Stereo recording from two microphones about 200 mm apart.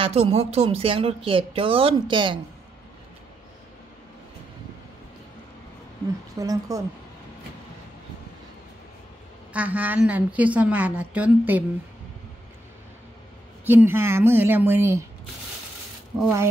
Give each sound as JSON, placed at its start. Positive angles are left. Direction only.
{"t": 0.0, "sound": "speech", "side_deg": -30}
{"t": 6.3, "sound": "a woman's voice", "side_deg": -15}
{"t": 9.5, "sound": "a woman's voice", "side_deg": -5}
{"t": 13.7, "sound": "a woman's voice", "side_deg": -10}